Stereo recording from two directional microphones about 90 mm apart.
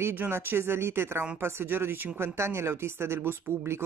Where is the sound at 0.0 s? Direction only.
25° right (ahead or behind).